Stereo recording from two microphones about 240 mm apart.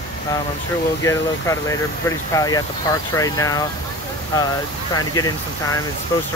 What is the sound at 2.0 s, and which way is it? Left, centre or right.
Speech, centre.